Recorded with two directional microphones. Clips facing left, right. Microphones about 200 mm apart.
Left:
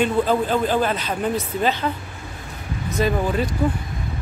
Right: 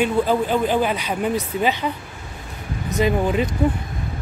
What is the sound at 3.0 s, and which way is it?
Speech, 15° right (ahead or behind).